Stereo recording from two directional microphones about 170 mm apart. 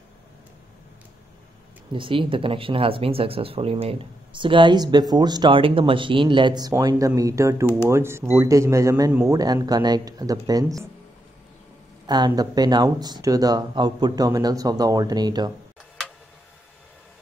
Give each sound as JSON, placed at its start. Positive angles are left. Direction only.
{"t": 2.0, "sound": "speech", "side_deg": -30}
{"t": 12.1, "sound": "speech", "side_deg": -25}